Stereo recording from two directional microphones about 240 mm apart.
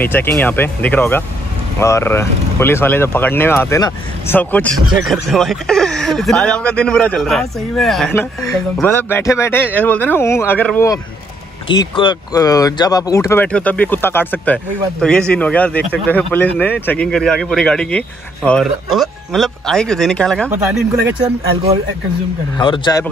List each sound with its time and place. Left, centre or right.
0.0 s speech: centre
11.6 s speech: centre
20.4 s speech: centre
22.6 s speech: centre